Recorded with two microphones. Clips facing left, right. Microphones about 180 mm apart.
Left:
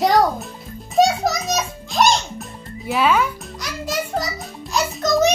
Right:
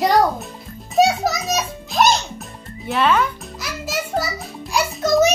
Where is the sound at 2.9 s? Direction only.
5° left (ahead or behind).